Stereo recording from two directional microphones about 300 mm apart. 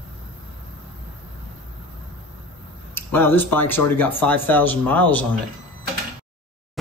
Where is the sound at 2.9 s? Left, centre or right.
Centre.